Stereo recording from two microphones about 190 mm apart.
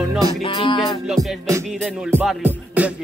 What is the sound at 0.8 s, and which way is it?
Music, centre (ahead or behind).